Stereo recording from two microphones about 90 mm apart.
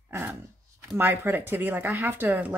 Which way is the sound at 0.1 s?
25° right (ahead or behind).